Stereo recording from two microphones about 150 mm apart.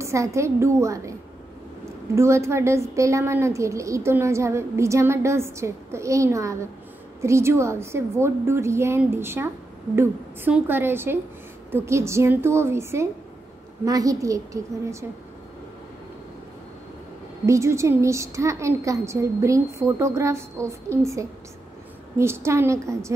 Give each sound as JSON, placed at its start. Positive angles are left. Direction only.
{"t": 0.0, "sound": "a woman's voice", "side_deg": -20}
{"t": 17.5, "sound": "a woman's voice", "side_deg": -20}